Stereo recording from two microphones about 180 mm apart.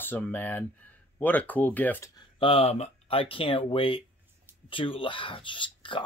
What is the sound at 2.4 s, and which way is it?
Speech, 35° left (ahead or behind).